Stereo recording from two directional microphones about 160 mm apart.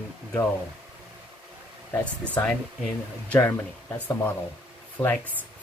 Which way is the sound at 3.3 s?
15° left (ahead or behind).